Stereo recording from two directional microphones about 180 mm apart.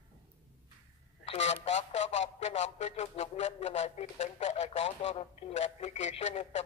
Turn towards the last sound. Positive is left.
turn(degrees=35)  # may be behind; listen again after turning